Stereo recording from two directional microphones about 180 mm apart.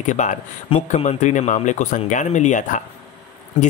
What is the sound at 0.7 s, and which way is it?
Speech, 30° left (ahead or behind).